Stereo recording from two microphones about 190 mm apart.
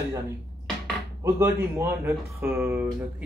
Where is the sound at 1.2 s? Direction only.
10° right (ahead or behind).